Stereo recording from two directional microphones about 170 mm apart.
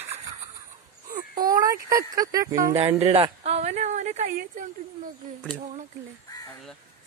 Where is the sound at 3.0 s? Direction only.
40° right (ahead or behind).